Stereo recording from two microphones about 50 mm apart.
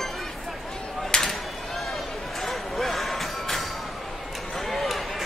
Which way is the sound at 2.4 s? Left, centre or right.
Centre.